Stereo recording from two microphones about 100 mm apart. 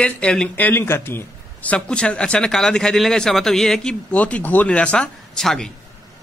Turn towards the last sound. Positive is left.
turn(degrees=5)  # may be behind; listen again after turning